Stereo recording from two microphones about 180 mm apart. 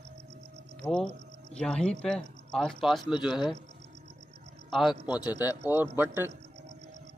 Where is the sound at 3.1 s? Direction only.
25° left (ahead or behind).